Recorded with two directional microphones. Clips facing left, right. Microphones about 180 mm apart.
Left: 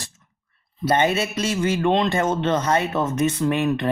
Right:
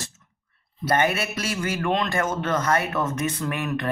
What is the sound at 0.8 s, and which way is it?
Speech, 25° left (ahead or behind).